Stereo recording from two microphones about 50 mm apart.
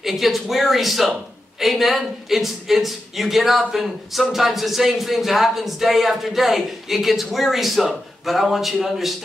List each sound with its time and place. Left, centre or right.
0.0 s speech: centre